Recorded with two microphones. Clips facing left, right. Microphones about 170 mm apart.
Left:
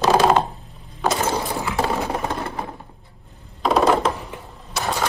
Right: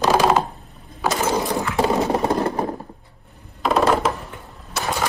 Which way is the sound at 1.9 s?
35° right (ahead or behind).